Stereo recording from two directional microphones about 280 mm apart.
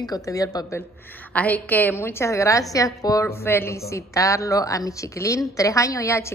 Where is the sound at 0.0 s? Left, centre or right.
Centre.